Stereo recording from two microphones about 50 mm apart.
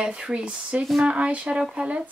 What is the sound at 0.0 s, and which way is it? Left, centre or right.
Speech, centre.